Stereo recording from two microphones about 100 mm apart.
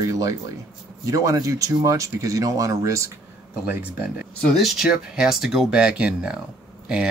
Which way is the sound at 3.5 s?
15° right (ahead or behind).